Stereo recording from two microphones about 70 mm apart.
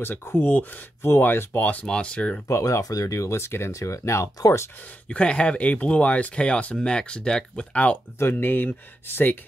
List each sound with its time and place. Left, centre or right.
0.0 s speech: left; by 2.4 s centre
2.4 s speech: left
5.0 s speech: centre
8.2 s speech: left